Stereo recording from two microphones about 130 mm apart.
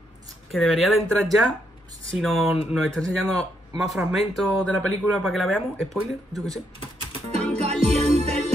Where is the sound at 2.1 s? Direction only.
Centre (ahead or behind).